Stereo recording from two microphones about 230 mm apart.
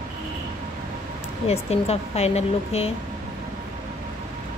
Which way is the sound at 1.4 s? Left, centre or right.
Left.